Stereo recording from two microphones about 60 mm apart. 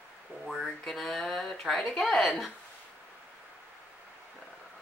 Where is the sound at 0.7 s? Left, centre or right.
Centre.